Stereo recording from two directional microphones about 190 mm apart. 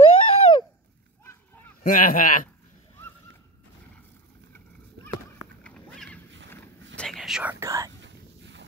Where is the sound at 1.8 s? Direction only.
45° left (ahead or behind).